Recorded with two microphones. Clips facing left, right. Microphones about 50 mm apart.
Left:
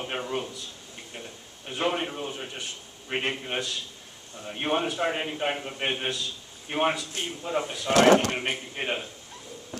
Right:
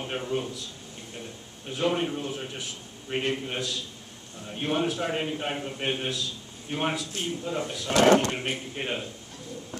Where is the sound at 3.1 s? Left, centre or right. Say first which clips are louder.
Right 1 dB; left.